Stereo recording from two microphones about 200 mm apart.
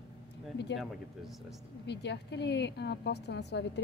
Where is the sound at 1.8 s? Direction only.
60° left (ahead or behind).